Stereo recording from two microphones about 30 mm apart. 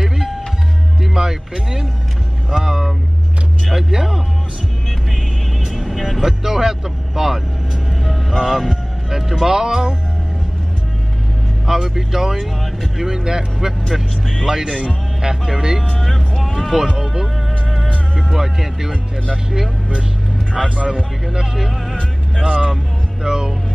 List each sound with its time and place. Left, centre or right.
0.0 s music: centre
2.5 s vehicle: centre
3.9 s music: centre
5.7 s vehicle: centre
6.0 s vehicle: centre
11.6 s music: centre
12.9 s speech: centre
18.3 s speech: centre
20.5 s speech: centre
20.9 s speech: right
23.2 s speech: right